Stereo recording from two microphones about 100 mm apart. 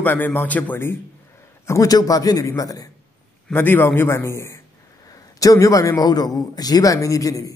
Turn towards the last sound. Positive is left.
turn(degrees=35)  # may be behind; listen again after turning